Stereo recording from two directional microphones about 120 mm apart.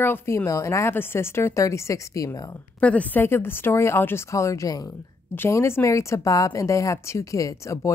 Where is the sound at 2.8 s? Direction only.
10° left (ahead or behind).